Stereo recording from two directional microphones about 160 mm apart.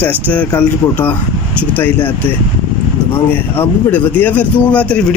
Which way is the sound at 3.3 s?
10° left (ahead or behind).